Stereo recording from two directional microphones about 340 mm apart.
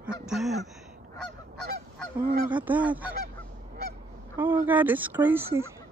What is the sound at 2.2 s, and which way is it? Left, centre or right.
Goose, right.